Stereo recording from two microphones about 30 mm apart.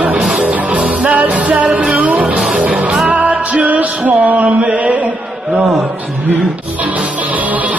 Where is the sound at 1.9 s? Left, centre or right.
Right.